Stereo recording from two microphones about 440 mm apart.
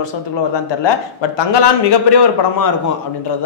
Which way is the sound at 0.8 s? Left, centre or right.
Left.